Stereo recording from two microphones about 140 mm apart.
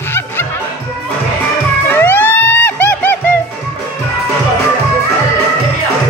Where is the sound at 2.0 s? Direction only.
15° left (ahead or behind).